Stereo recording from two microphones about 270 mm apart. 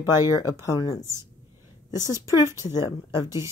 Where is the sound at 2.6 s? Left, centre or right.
Centre.